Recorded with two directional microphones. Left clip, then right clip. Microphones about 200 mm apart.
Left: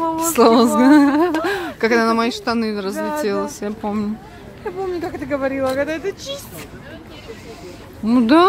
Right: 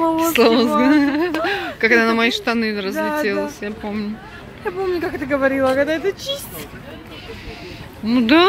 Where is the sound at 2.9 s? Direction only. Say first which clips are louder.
Right 2 dB; 55° right (ahead or behind).